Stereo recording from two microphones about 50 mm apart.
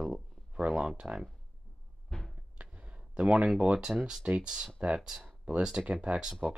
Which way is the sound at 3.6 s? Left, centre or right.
Right.